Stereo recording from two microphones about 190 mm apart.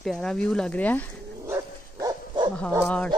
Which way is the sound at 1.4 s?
15° right (ahead or behind).